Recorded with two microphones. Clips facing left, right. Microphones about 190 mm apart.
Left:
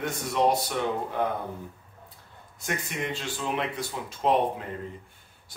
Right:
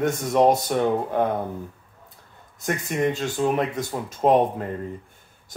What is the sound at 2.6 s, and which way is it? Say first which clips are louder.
Speech: right 9 dB; 45° right (ahead or behind).